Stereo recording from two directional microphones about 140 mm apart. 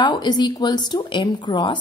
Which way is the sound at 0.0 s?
30° left (ahead or behind).